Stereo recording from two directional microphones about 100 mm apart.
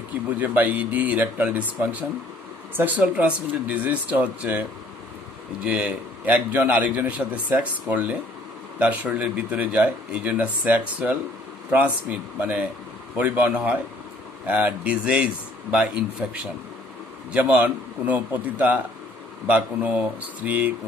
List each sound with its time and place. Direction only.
0.4 s speech: 15° right (ahead or behind)